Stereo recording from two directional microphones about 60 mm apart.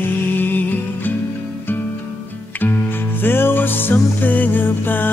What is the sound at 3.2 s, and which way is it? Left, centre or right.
Music, left.